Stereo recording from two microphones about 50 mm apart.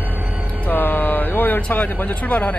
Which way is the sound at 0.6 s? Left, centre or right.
Left.